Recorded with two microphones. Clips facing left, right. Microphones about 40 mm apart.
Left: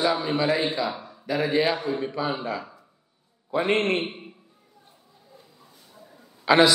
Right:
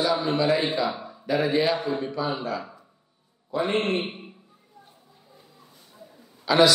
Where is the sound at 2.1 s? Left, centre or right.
Centre.